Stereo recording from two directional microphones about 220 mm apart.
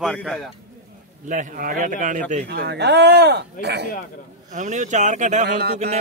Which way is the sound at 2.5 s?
50° right (ahead or behind).